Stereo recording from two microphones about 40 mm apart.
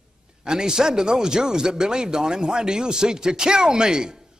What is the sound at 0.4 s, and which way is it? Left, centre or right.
A man's voice, centre.